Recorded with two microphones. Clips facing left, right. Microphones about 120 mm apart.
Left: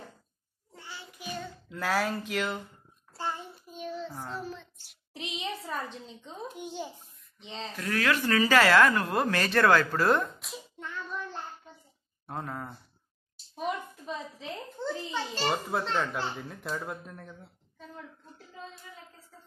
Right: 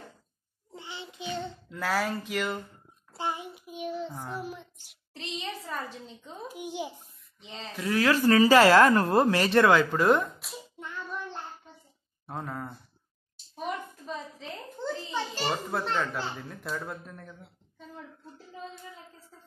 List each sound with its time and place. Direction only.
0.7 s child singing: 20° right (ahead or behind)
1.7 s speech: 10° left (ahead or behind)
2.0 s a woman's voice: 10° right (ahead or behind)
3.1 s child singing: 15° right (ahead or behind)
5.1 s a child's voice: 10° left (ahead or behind)
5.6 s a woman's voice: 5° right (ahead or behind)
7.9 s speech: 25° right (ahead or behind)
10.4 s hands: centre (ahead or behind)
12.3 s a woman's voice: centre (ahead or behind)
15.1 s a woman's voice: 15° right (ahead or behind)
15.9 s a child's voice: 10° left (ahead or behind)